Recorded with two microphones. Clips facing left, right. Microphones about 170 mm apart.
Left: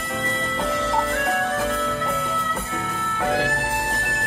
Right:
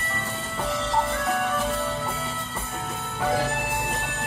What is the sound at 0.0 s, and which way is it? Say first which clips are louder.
Music: left 5 dB; 90° left.